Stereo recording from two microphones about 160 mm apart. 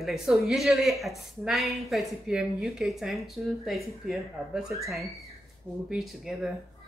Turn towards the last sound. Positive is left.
turn(degrees=0)  # may be behind; listen again after turning